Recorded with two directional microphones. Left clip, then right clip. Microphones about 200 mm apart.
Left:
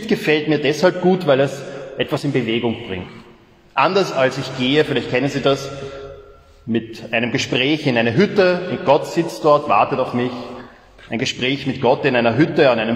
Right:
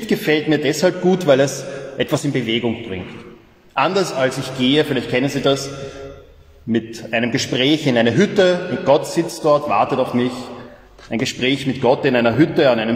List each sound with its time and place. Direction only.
0.1 s a man's voice: 20° left (ahead or behind)
7.1 s a man's voice: 20° left (ahead or behind)